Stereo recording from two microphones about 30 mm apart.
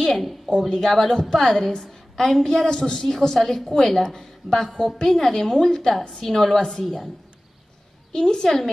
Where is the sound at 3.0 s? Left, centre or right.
Centre.